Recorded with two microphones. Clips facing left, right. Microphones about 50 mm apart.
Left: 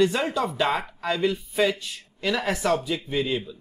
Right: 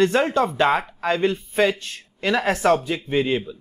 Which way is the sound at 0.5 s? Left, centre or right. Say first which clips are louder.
Right 5 dB; right.